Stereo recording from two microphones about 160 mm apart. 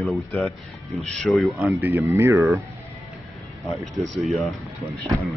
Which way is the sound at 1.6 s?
15° right (ahead or behind).